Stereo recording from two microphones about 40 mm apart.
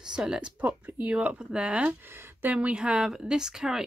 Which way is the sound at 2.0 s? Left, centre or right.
Right.